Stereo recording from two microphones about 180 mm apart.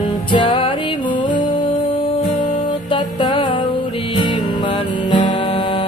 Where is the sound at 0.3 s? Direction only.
25° left (ahead or behind).